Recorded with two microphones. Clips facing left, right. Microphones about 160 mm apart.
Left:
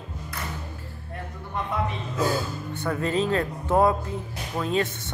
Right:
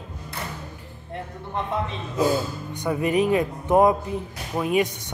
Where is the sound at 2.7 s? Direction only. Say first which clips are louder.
Right 4 dB; 15° right (ahead or behind).